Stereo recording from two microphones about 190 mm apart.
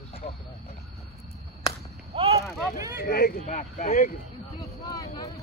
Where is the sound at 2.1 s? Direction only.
30° right (ahead or behind).